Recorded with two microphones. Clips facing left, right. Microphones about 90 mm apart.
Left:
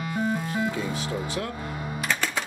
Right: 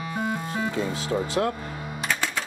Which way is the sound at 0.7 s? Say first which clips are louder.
Right 3 dB; 30° right (ahead or behind).